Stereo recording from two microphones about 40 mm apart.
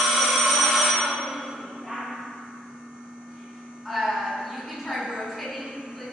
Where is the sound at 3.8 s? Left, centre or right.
Centre.